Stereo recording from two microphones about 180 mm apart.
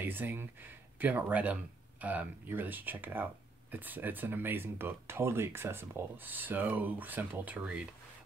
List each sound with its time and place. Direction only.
0.0 s speech: 10° right (ahead or behind)